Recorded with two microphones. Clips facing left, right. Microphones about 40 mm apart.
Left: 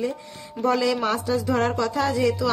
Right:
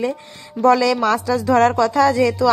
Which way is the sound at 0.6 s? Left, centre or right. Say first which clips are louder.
Right 7 dB; right.